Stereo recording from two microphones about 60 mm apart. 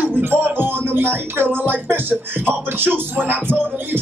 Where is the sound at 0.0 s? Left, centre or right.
Right.